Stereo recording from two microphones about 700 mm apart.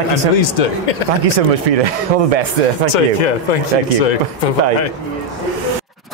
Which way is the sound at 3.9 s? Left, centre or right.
Left.